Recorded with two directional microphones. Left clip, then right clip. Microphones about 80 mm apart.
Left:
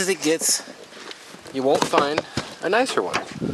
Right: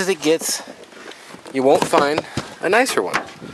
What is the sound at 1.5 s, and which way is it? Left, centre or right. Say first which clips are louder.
Speech: right 4 dB; right.